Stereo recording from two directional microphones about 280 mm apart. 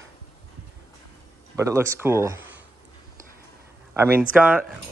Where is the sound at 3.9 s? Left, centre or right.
Centre.